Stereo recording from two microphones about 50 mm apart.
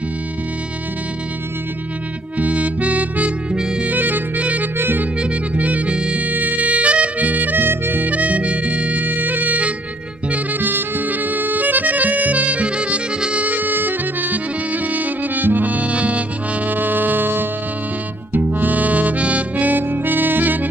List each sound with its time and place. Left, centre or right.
2.3 s music: right
3.5 s music: centre
3.8 s music: right
4.7 s music: right
5.2 s music: right
16.7 s music: right